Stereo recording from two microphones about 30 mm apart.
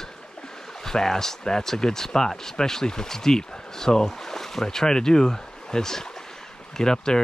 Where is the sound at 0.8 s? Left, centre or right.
Centre.